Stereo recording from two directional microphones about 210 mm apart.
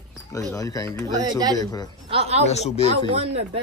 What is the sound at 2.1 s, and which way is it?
Speech, 30° right (ahead or behind).